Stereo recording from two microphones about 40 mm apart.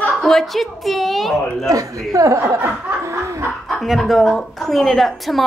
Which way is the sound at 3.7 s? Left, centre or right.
Centre.